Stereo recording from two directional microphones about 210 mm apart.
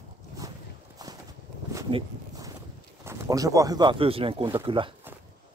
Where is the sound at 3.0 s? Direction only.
15° right (ahead or behind).